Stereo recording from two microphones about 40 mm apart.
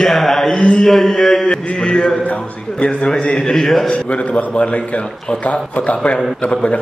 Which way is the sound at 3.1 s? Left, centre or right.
Centre.